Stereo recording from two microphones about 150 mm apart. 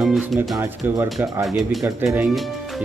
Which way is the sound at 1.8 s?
15° right (ahead or behind).